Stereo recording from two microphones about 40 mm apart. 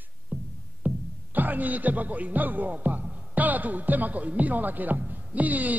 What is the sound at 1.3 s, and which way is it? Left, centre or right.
Speech, right.